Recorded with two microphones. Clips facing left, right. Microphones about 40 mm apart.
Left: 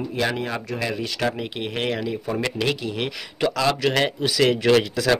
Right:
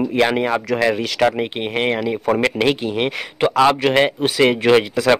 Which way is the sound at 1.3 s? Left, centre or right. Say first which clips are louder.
Right 6 dB; right.